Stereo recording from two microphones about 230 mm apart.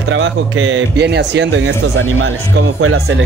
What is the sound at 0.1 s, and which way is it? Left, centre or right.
Speech, right.